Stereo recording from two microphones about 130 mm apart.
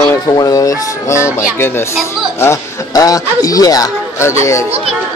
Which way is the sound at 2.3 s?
20° left (ahead or behind).